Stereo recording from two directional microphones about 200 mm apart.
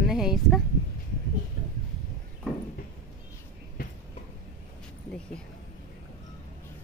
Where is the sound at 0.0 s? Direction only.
Centre (ahead or behind).